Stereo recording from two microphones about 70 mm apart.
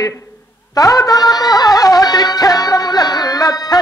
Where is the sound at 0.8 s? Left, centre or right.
Left.